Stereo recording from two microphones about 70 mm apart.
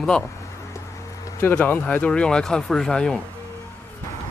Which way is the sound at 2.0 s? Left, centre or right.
Centre.